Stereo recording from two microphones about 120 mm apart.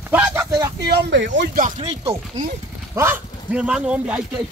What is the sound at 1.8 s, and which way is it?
Chopping, 50° right (ahead or behind).